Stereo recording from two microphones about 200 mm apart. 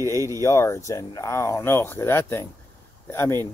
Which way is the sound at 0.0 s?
15° right (ahead or behind).